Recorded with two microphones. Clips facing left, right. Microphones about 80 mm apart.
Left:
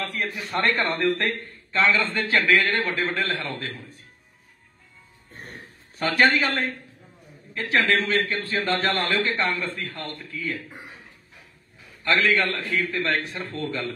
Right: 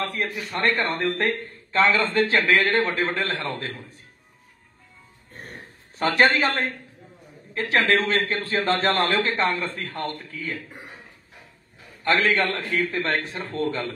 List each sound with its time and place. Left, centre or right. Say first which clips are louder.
0.0 s a man's voice: right 2 dB; right
1.0 s speech: left 1 dB; centre
1.9 s a man's voice: right 2 dB; right
2.8 s a man's voice: right 2 dB; right
5.9 s a man's voice: right 1 dB; right
12.0 s a man's voice: right 1 dB; right